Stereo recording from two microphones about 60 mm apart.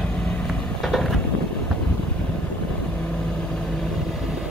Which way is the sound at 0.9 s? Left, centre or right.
Centre.